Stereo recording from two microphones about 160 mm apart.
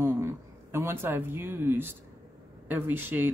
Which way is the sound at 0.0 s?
15° right (ahead or behind).